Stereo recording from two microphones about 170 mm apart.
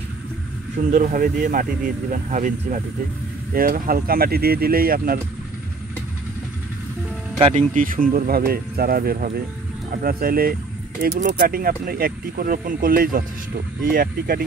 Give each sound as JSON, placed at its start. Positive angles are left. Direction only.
{"t": 0.7, "sound": "speech", "side_deg": -50}
{"t": 7.3, "sound": "speech", "side_deg": -35}
{"t": 7.7, "sound": "speech", "side_deg": -55}